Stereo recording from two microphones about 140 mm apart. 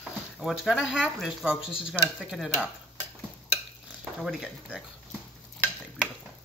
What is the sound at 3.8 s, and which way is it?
Speech, centre (ahead or behind).